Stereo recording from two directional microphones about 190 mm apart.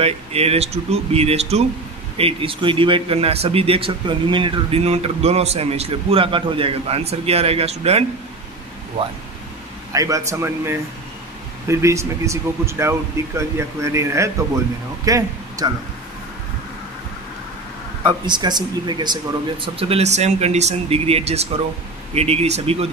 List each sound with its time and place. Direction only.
0.0 s a man's voice: 30° right (ahead or behind)
9.9 s speech: 15° right (ahead or behind)
18.0 s a man's voice: 25° right (ahead or behind)